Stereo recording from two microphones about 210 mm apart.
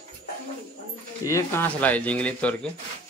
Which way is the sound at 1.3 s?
10° left (ahead or behind).